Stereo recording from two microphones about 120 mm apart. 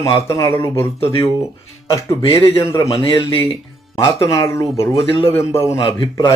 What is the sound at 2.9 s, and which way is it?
Speech, 50° left (ahead or behind).